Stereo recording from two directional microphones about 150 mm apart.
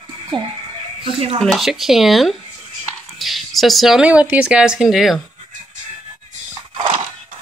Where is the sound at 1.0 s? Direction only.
40° right (ahead or behind).